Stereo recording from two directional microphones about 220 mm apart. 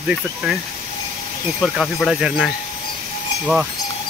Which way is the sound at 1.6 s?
Centre (ahead or behind).